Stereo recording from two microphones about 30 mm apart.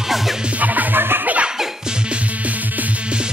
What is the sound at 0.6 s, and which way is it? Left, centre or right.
Music, right.